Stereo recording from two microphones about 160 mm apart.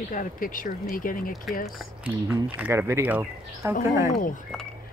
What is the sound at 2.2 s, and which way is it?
Speech, 15° right (ahead or behind).